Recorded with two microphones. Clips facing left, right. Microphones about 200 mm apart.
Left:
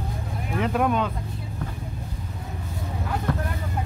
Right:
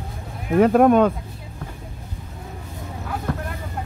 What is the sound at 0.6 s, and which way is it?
Speech, 45° right (ahead or behind).